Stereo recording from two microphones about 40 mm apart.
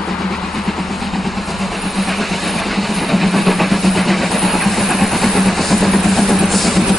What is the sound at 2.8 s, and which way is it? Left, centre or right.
Vehicle, centre.